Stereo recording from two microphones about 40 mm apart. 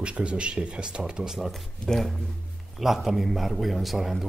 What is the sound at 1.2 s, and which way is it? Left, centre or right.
Speech, centre.